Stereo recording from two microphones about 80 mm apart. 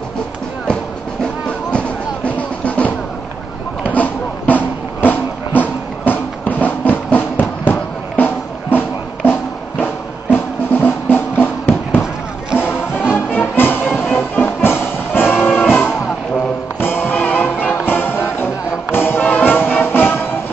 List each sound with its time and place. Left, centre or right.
1.2 s music: centre